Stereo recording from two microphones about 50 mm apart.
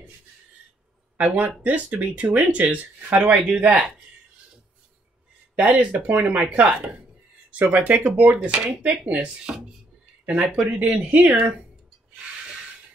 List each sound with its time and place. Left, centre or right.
1.1 s speech: right
5.7 s speech: right